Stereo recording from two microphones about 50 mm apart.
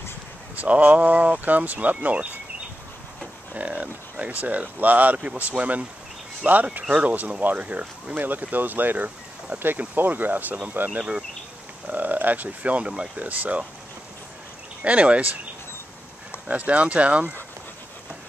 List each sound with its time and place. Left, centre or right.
0.6 s speech: right
3.5 s speech: right
8.2 s speech: right
14.8 s speech: right